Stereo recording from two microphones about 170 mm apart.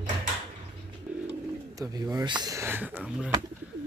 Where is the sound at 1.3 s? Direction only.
20° right (ahead or behind).